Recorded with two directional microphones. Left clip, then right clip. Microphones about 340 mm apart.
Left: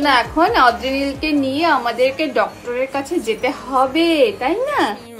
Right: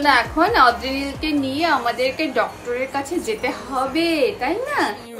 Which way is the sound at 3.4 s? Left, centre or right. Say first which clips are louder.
Left 6 dB; centre.